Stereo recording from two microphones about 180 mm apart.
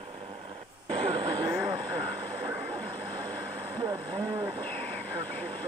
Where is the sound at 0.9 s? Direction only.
25° right (ahead or behind).